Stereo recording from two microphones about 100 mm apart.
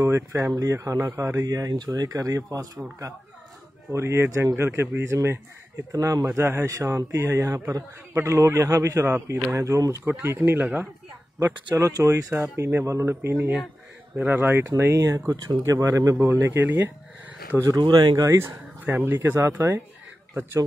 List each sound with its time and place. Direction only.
0.0 s speech: 30° right (ahead or behind)
3.9 s speech: 25° right (ahead or behind)
12.0 s speech: 30° right (ahead or behind)
17.6 s speech: 35° right (ahead or behind)
18.2 s speech: 25° right (ahead or behind)